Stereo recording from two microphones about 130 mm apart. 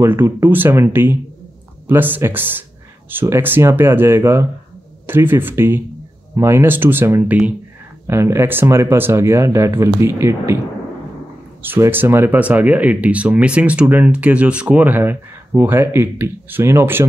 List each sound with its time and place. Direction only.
0.0 s speech: 15° right (ahead or behind)
11.6 s speech: 15° right (ahead or behind)